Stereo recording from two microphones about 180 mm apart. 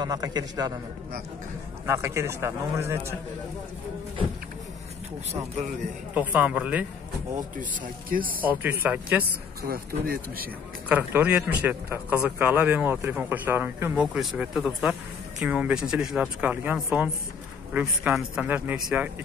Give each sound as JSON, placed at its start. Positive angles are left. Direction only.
{"t": 0.0, "sound": "a man's voice", "side_deg": -20}
{"t": 1.9, "sound": "speech", "side_deg": -15}
{"t": 6.1, "sound": "speech", "side_deg": -10}
{"t": 7.3, "sound": "speech", "side_deg": -50}
{"t": 8.3, "sound": "speech", "side_deg": -10}
{"t": 9.6, "sound": "speech", "side_deg": -55}
{"t": 10.9, "sound": "speech", "side_deg": -10}